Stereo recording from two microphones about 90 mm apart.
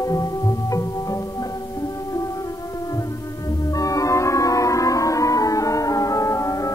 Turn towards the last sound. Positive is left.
turn(degrees=35)  # may be behind; listen again after turning